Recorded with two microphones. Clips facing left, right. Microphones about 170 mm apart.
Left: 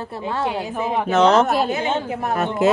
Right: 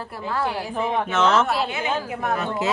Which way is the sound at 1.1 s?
35° left (ahead or behind).